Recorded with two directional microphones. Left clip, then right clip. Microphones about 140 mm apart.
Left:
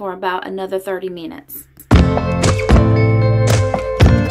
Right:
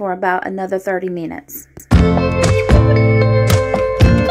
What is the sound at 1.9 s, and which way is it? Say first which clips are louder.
Music: right 1 dB; centre (ahead or behind).